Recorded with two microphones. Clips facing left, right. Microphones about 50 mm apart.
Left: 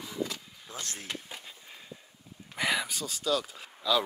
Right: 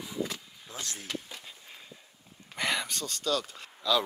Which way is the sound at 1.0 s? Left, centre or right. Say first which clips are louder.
Right 1 dB; centre.